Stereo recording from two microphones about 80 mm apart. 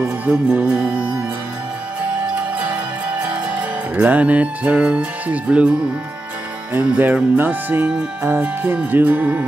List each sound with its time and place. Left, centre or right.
0.0 s music: centre
2.2 s music: centre